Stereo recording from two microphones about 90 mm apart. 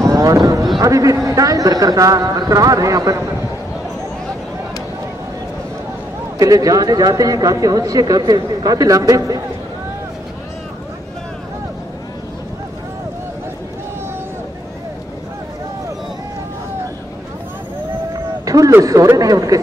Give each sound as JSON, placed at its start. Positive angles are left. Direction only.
{"t": 0.0, "sound": "a sound", "side_deg": -40}
{"t": 0.7, "sound": "speech", "side_deg": -40}
{"t": 6.3, "sound": "speech", "side_deg": -40}
{"t": 18.1, "sound": "vehicle", "side_deg": -40}
{"t": 18.7, "sound": "speech", "side_deg": -35}